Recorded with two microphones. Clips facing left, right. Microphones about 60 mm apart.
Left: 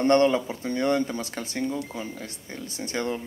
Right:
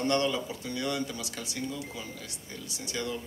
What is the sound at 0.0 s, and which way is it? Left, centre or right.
Speech, left.